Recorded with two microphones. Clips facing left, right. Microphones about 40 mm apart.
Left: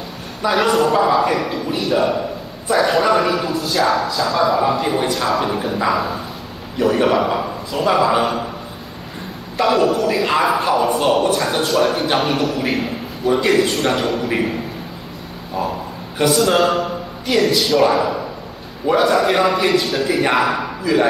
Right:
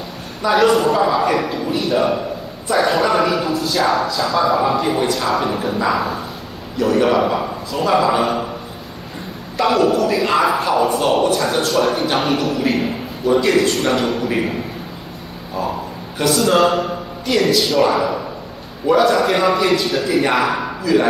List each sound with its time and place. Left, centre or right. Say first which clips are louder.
0.5 s a man's voice: right 2 dB; centre
6.8 s a man's voice: even; centre
9.6 s a man's voice: right 1 dB; centre
16.2 s a man's voice: even; centre